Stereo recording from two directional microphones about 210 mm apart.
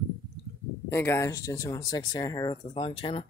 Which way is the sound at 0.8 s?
10° left (ahead or behind).